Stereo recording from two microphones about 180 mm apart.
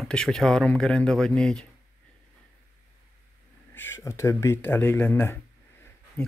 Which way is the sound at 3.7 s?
10° left (ahead or behind).